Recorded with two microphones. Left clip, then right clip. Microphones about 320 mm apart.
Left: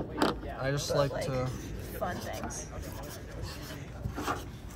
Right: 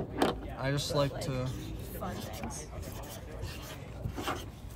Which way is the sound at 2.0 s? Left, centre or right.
Left.